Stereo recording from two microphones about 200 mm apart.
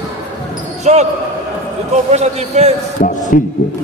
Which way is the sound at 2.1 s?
35° right (ahead or behind).